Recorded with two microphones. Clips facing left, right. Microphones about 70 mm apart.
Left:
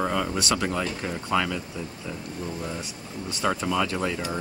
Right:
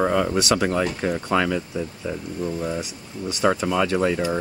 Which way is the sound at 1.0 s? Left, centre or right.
Right.